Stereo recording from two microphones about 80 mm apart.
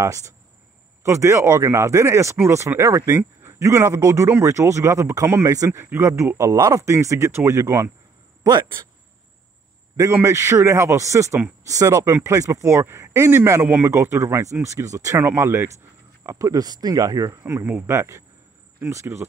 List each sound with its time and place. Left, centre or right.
0.0 s speech: right
10.2 s speech: right
13.8 s speech: right